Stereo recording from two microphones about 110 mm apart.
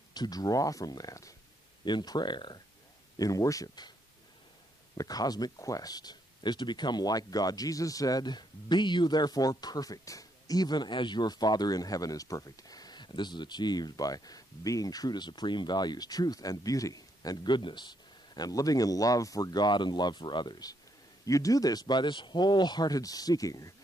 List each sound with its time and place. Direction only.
0.1 s speech: 35° left (ahead or behind)
3.2 s speech: 30° left (ahead or behind)
4.9 s speech: 35° left (ahead or behind)